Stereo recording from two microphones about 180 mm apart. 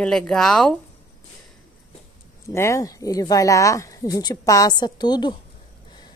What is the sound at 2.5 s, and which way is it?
Speech, 15° left (ahead or behind).